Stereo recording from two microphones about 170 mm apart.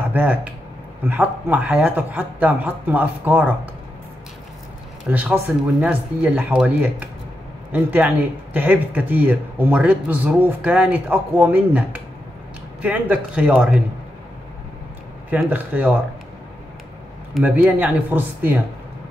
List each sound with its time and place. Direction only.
0.1 s speech: 10° right (ahead or behind)
5.1 s speech: 10° right (ahead or behind)
15.2 s speech: 10° right (ahead or behind)
17.3 s speech: 5° right (ahead or behind)